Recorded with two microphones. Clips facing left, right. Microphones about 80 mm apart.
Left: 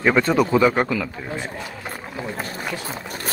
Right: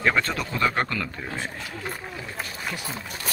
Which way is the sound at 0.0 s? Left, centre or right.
Centre.